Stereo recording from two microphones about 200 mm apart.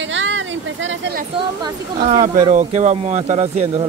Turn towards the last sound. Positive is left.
turn(degrees=-35)  # may be behind; listen again after turning